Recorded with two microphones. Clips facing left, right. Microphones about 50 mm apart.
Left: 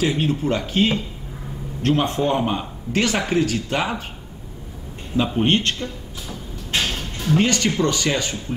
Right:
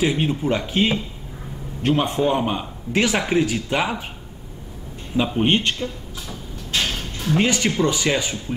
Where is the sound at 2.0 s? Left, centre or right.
Centre.